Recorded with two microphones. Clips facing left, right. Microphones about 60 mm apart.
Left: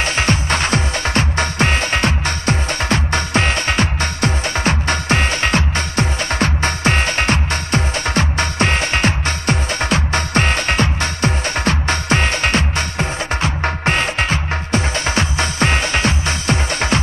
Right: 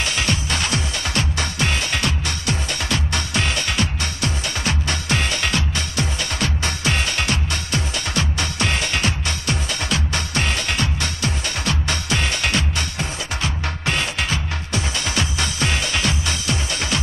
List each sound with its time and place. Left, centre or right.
0.0 s music: left